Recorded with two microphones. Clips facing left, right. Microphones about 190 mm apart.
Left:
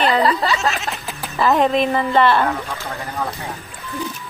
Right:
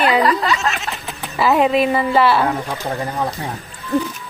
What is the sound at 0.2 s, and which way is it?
Speech, 30° left (ahead or behind).